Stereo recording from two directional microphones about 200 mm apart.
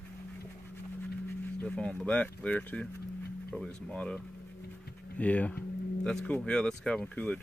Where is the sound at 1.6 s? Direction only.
5° left (ahead or behind).